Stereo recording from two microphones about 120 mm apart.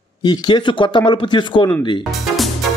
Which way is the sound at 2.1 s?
Centre (ahead or behind).